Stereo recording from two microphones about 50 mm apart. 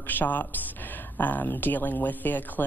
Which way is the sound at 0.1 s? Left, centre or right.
Left.